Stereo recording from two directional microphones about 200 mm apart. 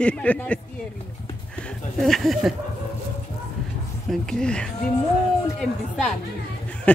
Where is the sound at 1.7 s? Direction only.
Centre (ahead or behind).